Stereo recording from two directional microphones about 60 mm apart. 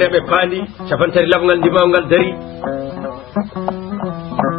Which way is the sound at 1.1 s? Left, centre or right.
Centre.